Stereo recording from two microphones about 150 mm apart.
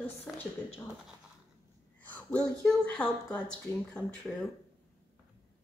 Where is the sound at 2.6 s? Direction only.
5° left (ahead or behind).